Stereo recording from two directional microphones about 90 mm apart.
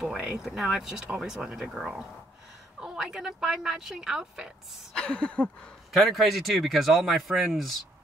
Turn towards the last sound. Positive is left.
turn(degrees=0)  # may be behind; listen again after turning